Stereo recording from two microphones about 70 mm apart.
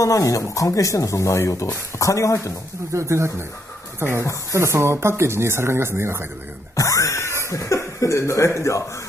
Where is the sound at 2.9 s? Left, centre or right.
Right.